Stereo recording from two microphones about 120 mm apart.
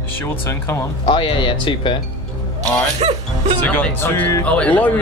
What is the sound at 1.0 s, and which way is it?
Speech, 45° left (ahead or behind).